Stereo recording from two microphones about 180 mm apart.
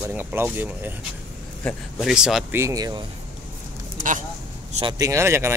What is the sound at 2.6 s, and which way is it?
Speech, 20° right (ahead or behind).